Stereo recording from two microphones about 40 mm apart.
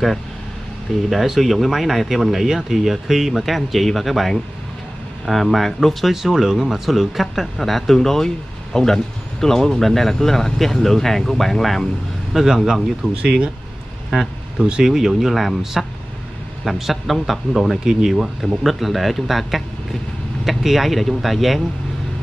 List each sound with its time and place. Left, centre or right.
1.1 s speech: centre
6.2 s speech: centre
13.1 s speech: right
14.6 s speech: right
14.9 s speech: centre
17.8 s speech: centre
18.6 s speech: centre